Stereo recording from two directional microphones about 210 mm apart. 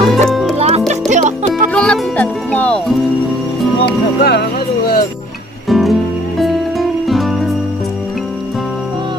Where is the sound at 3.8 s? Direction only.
50° left (ahead or behind).